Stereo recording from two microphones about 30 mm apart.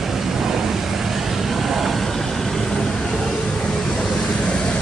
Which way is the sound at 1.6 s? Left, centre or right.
Centre.